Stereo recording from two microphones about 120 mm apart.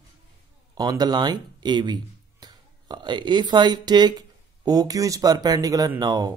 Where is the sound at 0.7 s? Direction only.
35° right (ahead or behind).